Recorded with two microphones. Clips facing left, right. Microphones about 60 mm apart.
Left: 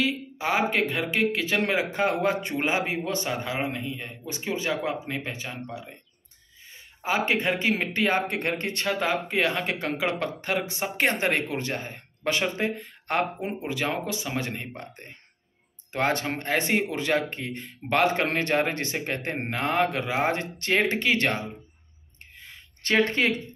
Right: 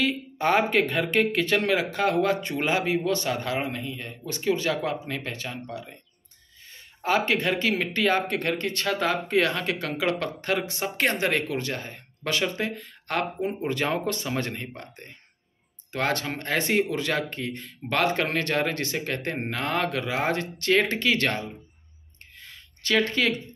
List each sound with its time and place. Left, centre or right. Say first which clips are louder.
0.0 s speech: right 2 dB; centre
1.6 s speech: even; left
7.2 s speech: even; left
13.6 s speech: right 1 dB; centre; by 21.5 s left
22.8 s speech: left 1 dB; left